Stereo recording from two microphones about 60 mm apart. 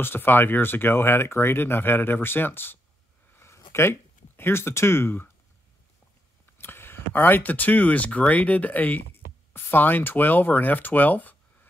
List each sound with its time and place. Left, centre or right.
0.0 s speech: left
3.3 s a sound: left
6.6 s speech: left